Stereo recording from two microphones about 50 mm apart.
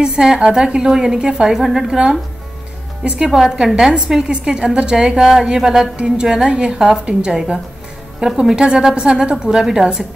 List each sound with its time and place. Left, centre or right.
0.0 s a woman's voice: centre
3.3 s a woman's voice: centre